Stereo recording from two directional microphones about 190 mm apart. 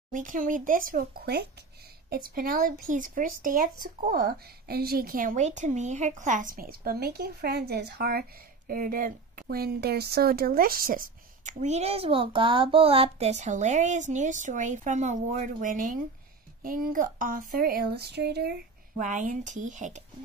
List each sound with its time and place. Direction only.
0.1 s speech: 45° right (ahead or behind)
18.9 s speech: 40° right (ahead or behind)